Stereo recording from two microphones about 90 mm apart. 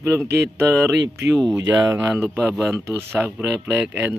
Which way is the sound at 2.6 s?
30° right (ahead or behind).